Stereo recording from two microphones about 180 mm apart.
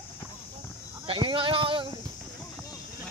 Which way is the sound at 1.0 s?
30° right (ahead or behind).